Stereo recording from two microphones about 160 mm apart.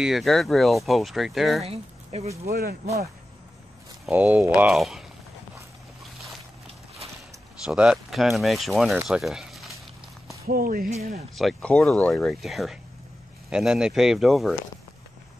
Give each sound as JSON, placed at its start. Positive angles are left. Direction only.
{"t": 0.0, "sound": "speech", "side_deg": 0}
{"t": 1.6, "sound": "speech", "side_deg": -40}
{"t": 2.5, "sound": "speech", "side_deg": -70}
{"t": 4.1, "sound": "speech", "side_deg": -10}
{"t": 7.6, "sound": "speech", "side_deg": -5}
{"t": 10.4, "sound": "speech", "side_deg": -65}
{"t": 11.3, "sound": "speech", "side_deg": 5}